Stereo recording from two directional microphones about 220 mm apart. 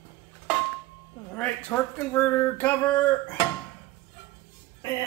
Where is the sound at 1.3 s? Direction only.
5° left (ahead or behind).